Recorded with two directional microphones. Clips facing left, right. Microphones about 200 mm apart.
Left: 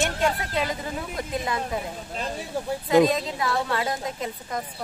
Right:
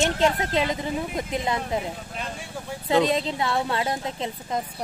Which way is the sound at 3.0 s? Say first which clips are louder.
Even; 25° right (ahead or behind).